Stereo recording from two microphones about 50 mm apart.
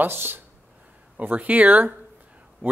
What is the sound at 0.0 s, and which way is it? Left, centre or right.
Speech, right.